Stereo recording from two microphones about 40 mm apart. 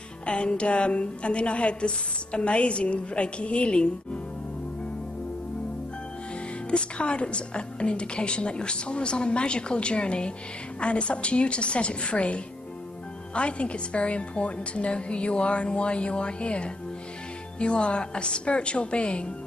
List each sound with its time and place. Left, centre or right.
0.3 s a woman's voice: left
6.7 s a woman's voice: left